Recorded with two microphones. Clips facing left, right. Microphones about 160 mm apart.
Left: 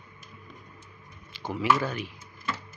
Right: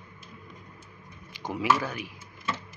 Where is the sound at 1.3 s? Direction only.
15° right (ahead or behind).